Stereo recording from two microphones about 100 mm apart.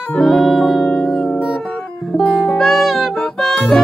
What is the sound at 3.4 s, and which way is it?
Music, 5° left (ahead or behind).